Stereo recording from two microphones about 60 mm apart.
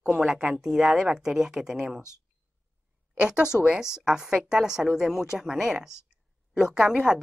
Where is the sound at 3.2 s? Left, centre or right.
Centre.